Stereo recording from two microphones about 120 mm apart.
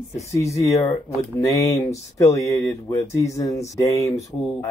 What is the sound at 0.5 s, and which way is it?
Speech, 25° left (ahead or behind).